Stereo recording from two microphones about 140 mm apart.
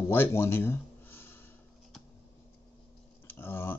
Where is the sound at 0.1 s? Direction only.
15° left (ahead or behind).